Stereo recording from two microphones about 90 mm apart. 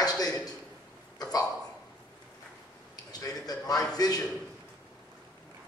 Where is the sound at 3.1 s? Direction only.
45° left (ahead or behind).